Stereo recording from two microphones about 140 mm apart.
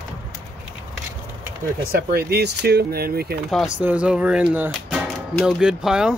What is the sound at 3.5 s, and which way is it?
Speech, 5° right (ahead or behind).